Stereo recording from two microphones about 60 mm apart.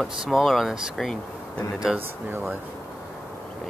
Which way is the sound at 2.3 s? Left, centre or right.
Right.